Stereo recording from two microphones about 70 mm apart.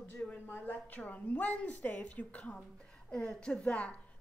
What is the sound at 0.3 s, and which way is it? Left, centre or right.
Speech, left.